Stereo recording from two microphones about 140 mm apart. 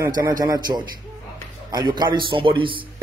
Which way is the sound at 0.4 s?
30° right (ahead or behind).